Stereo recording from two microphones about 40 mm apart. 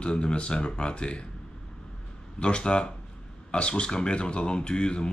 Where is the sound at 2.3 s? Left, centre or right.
Left.